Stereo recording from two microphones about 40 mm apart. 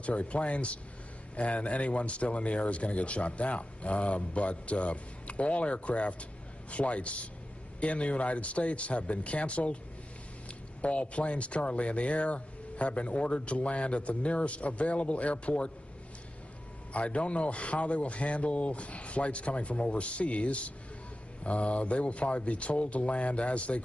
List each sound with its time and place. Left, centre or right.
0.0 s speech: left
10.8 s speech: left
16.9 s speech: left